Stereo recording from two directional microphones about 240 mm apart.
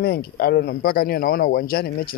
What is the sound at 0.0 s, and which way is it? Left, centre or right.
Speech, left.